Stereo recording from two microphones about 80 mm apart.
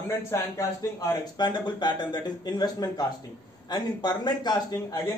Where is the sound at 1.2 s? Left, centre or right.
Left.